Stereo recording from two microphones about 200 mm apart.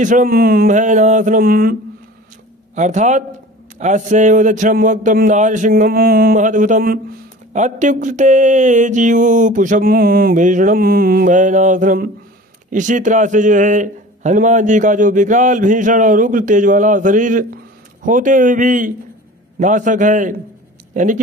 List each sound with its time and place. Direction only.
0.0 s a man's voice: 40° right (ahead or behind)
2.7 s a man's voice: 35° right (ahead or behind)